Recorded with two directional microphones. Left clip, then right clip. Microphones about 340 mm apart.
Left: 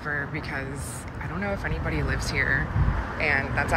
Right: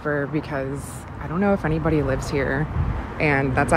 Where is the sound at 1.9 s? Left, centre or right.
Centre.